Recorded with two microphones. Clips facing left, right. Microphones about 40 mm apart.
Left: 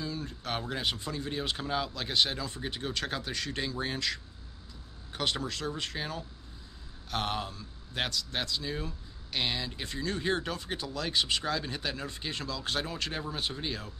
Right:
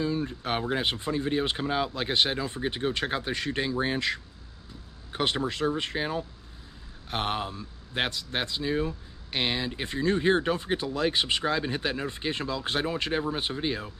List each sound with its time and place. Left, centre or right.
0.0 s speech: right